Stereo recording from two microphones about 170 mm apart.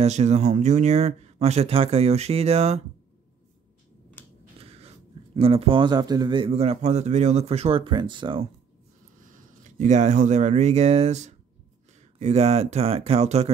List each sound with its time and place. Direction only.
0.0 s speech: 40° right (ahead or behind)
4.2 s a sound: 10° left (ahead or behind)
4.6 s speech: 35° right (ahead or behind)
9.8 s speech: 45° right (ahead or behind)